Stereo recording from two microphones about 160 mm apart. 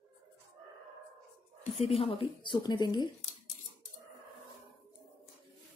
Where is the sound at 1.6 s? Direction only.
40° left (ahead or behind).